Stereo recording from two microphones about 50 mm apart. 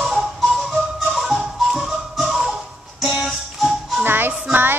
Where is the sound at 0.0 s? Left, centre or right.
Centre.